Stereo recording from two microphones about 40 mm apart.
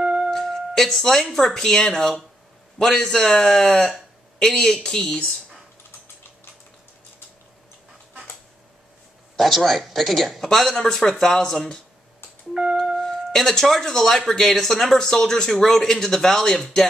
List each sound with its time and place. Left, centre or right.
0.0 s music: right
0.3 s speech: centre
9.4 s speech: centre
10.9 s speech: centre
12.5 s music: centre
13.0 s speech: centre